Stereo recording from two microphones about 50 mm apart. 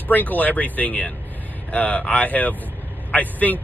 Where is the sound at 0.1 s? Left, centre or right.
Left.